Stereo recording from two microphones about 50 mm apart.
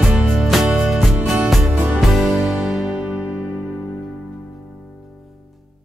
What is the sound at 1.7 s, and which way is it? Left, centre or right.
Music, right.